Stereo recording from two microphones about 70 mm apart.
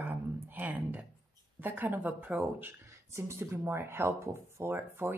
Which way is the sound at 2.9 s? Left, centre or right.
Right.